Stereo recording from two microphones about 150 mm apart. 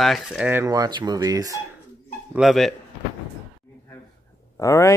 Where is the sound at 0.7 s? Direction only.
25° right (ahead or behind).